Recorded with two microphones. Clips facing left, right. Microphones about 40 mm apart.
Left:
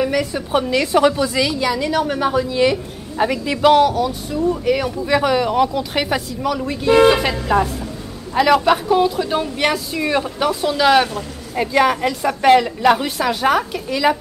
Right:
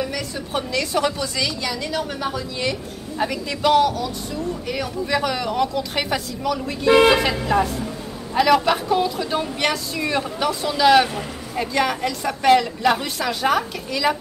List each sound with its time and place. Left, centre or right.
0.0 s a woman's voice: left